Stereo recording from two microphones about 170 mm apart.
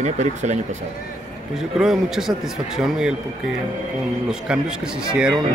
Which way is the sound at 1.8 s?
5° right (ahead or behind).